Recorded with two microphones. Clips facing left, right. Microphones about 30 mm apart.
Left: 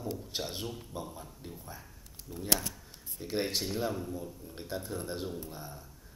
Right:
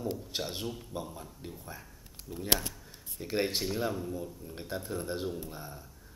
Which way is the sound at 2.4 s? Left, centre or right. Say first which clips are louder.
Right 2 dB; right.